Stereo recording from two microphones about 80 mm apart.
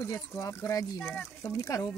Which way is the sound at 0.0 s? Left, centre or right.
Left.